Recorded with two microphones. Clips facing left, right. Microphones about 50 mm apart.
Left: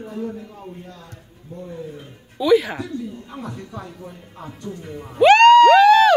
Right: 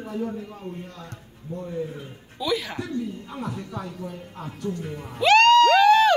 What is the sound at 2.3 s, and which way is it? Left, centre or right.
Speech, centre.